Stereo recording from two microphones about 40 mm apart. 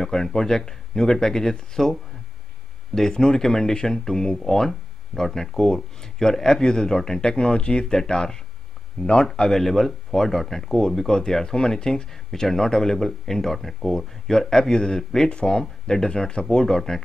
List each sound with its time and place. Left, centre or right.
0.0 s speech: centre
7.8 s speech: centre